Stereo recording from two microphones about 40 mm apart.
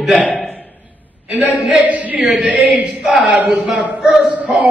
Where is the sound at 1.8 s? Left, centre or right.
Right.